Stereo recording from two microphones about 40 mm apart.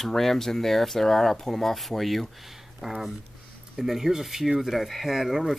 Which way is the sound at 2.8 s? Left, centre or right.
Centre.